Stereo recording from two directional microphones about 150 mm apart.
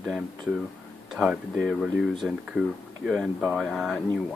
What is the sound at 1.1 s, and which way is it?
Speech, centre (ahead or behind).